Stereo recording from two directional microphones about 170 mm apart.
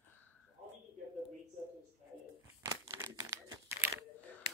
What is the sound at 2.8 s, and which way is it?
Crumpling, 15° right (ahead or behind).